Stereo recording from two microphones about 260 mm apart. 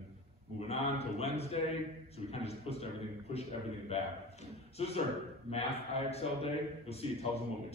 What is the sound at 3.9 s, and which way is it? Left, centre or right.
A man's voice, left.